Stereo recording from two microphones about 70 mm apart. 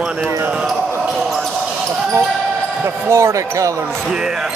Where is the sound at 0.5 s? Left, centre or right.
Centre.